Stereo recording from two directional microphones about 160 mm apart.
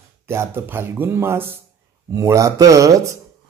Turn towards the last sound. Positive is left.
turn(degrees=-20)  # may be behind; listen again after turning